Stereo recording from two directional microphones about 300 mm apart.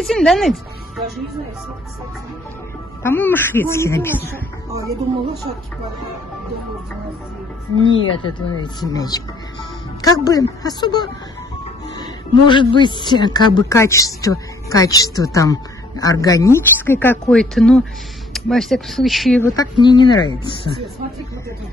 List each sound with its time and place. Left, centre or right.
0.0 s speech: centre
3.0 s speech: centre
7.8 s speech: centre
19.5 s speech: centre